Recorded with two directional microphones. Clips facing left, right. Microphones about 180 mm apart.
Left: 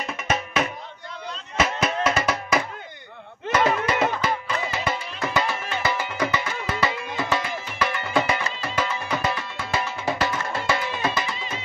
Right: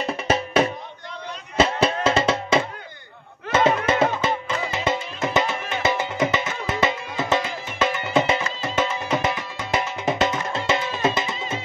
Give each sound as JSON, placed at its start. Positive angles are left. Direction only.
{"t": 0.0, "sound": "music", "side_deg": -30}